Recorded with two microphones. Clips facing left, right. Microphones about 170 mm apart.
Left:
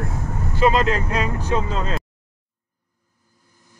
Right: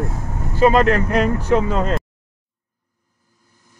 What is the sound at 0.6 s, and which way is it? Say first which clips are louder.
Speech: right 4 dB; 50° right (ahead or behind).